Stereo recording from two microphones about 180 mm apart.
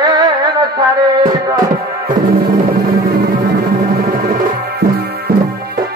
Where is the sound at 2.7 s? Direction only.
60° right (ahead or behind).